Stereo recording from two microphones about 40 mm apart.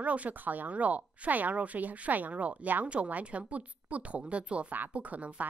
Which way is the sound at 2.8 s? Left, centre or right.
Right.